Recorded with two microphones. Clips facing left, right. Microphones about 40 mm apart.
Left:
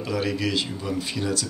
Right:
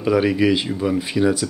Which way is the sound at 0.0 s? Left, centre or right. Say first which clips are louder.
Right 9 dB; centre.